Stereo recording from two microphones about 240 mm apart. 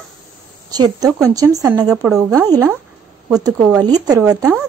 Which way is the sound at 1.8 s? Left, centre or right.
Centre.